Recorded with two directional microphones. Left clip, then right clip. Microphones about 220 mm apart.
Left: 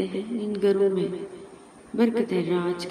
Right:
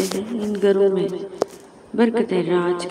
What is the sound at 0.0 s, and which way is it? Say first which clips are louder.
A woman's voice: right 5 dB; 10° right (ahead or behind).